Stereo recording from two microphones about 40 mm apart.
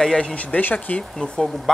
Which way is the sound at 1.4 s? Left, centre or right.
Centre.